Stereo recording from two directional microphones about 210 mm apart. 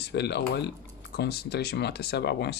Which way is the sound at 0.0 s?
50° left (ahead or behind).